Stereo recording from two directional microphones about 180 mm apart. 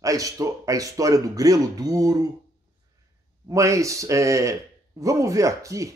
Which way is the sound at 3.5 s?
15° right (ahead or behind).